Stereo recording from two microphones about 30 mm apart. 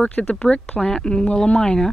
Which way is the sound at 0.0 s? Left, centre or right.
Left.